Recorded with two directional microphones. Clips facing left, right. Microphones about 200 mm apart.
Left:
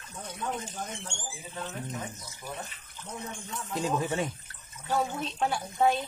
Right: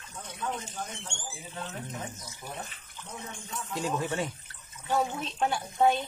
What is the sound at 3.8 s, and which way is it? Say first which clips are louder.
Speech: left 2 dB; 15° left (ahead or behind).